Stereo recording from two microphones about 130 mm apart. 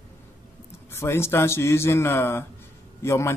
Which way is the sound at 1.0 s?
20° left (ahead or behind).